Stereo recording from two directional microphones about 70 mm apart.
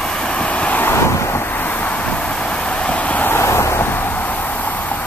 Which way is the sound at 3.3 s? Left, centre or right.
Left.